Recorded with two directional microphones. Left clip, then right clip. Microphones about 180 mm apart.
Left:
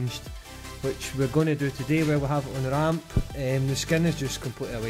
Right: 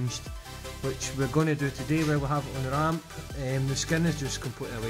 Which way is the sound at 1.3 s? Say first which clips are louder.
Left 2 dB; 5° left (ahead or behind).